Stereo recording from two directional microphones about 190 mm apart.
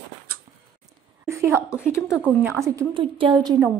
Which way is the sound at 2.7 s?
25° right (ahead or behind).